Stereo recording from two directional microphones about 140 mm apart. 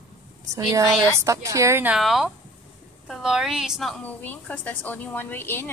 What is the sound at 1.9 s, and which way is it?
A woman's voice, centre (ahead or behind).